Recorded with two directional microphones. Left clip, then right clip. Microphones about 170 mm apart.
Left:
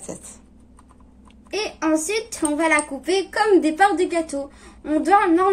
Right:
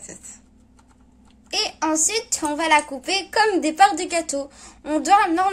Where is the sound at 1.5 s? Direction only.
50° right (ahead or behind).